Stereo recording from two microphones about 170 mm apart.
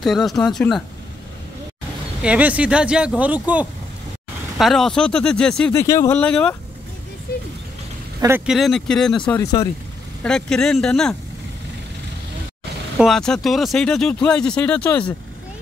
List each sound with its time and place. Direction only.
0.0 s speech: centre (ahead or behind)
2.2 s speech: 10° right (ahead or behind)
5.7 s speech: 15° left (ahead or behind)
8.5 s speech: centre (ahead or behind)
9.4 s speech: 20° left (ahead or behind)
10.2 s speech: 5° left (ahead or behind)
12.9 s speech: centre (ahead or behind)